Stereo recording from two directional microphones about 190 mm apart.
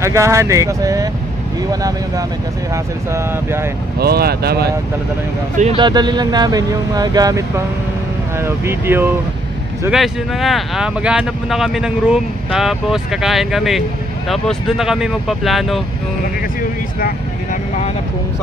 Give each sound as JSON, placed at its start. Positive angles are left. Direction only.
{"t": 0.0, "sound": "speech", "side_deg": -15}
{"t": 4.0, "sound": "speech", "side_deg": -55}
{"t": 5.8, "sound": "speech", "side_deg": -25}